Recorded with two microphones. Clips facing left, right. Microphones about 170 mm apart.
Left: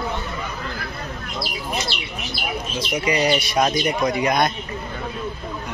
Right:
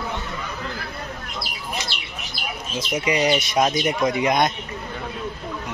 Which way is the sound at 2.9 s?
20° right (ahead or behind).